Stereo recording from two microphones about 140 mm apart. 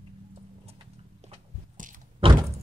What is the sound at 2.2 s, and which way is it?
Door, 40° right (ahead or behind).